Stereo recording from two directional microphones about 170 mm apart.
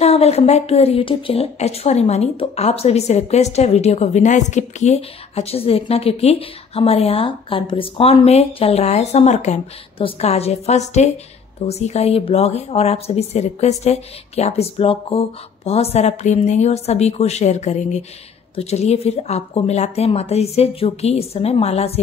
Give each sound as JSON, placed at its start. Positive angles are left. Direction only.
{"t": 0.0, "sound": "speech", "side_deg": 40}